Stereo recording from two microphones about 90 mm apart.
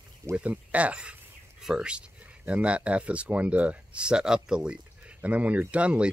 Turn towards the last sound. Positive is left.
turn(degrees=-15)  # may be behind; listen again after turning